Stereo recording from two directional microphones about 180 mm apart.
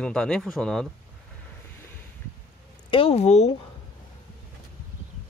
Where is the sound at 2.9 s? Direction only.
30° left (ahead or behind).